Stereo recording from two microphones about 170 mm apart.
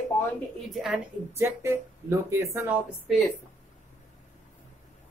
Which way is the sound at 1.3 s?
15° right (ahead or behind).